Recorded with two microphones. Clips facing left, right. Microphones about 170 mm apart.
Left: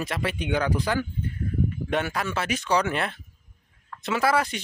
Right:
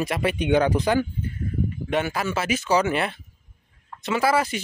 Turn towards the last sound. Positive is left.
turn(degrees=-5)  # may be behind; listen again after turning